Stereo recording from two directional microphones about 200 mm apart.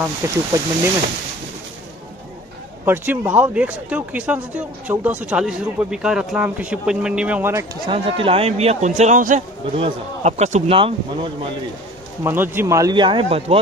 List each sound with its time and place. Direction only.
0.0 s speech: 15° right (ahead or behind)
2.8 s speech: 10° right (ahead or behind)
7.8 s a man's voice: 25° right (ahead or behind)
12.2 s speech: 10° right (ahead or behind); by 13.6 s 30° right (ahead or behind)